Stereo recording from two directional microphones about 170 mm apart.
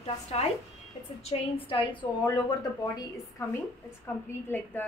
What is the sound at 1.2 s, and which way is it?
A woman's voice, 30° left (ahead or behind).